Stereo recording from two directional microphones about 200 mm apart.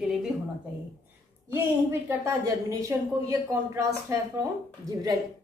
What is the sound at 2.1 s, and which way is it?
Speech, 15° right (ahead or behind).